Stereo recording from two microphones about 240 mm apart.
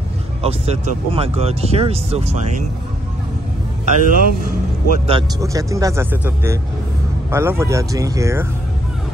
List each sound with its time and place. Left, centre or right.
0.4 s speech: right
3.8 s a man's voice: right
4.8 s speech: right
5.4 s speech: centre